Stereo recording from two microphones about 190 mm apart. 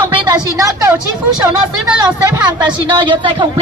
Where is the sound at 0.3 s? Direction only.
15° right (ahead or behind).